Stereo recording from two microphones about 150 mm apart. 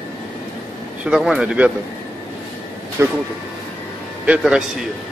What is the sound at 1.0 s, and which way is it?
Speech, 5° right (ahead or behind).